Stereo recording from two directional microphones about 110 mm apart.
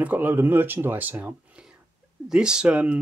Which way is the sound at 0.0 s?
15° right (ahead or behind).